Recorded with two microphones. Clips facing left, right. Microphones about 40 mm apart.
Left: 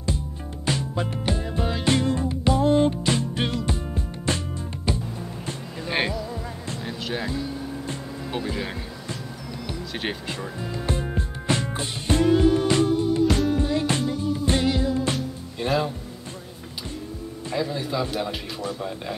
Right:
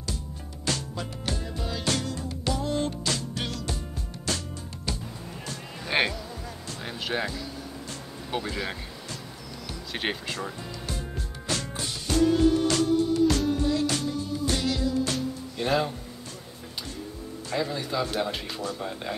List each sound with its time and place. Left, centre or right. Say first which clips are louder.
0.7 s music: left 5 dB; left
5.9 s music: even; centre
7.2 s music: left 6 dB; left
8.3 s speech: left 1 dB; centre
10.6 s music: left 7 dB; left
15.1 s music: even; centre
17.6 s speech: left 2 dB; centre